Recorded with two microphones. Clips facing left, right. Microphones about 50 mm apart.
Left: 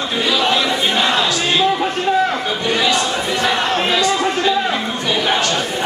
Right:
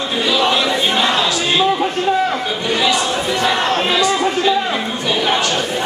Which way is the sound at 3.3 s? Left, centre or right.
Centre.